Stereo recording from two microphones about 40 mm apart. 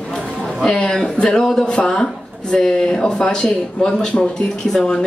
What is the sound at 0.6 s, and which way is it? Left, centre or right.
Speech, centre.